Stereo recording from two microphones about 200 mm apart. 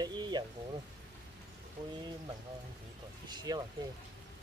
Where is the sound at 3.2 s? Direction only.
20° right (ahead or behind).